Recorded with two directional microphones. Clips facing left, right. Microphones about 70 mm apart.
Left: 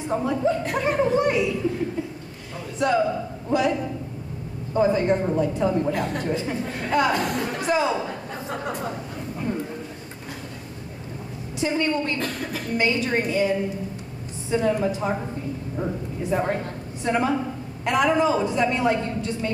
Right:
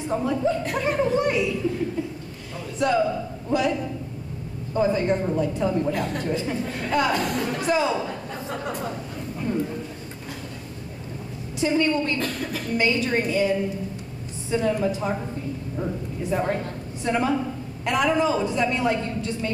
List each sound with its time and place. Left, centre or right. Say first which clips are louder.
0.1 s chuckle: left 1 dB; left
2.5 s a sound: even; left
4.7 s a woman's voice: left 2 dB; left
11.5 s a woman's voice: right 2 dB; left